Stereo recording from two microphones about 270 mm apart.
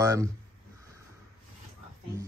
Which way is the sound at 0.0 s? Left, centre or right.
Centre.